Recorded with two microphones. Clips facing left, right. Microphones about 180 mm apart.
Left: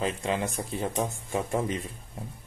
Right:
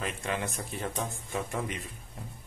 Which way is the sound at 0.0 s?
30° left (ahead or behind).